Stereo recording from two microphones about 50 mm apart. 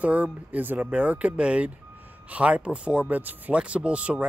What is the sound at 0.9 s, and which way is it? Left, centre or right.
Speech, right.